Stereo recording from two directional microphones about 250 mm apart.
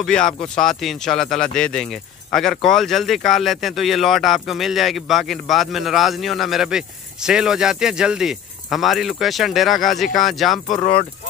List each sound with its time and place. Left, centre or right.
0.0 s speech: centre